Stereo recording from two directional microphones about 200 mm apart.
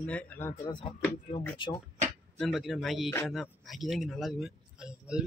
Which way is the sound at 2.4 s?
Centre (ahead or behind).